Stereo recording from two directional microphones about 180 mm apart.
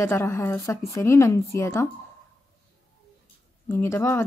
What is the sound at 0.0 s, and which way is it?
A woman's voice, 15° left (ahead or behind).